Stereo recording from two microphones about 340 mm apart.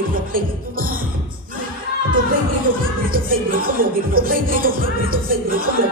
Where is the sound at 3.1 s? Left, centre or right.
Right.